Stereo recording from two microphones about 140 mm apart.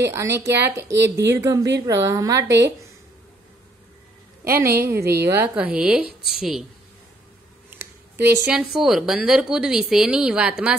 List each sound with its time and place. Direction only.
0.0 s speech: 20° right (ahead or behind)
4.8 s a woman's voice: 20° right (ahead or behind)
7.7 s a sound: 15° right (ahead or behind)
8.7 s speech: 5° right (ahead or behind)